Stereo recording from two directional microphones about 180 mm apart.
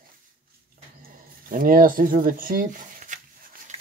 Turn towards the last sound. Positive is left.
turn(degrees=-45)  # may be behind; listen again after turning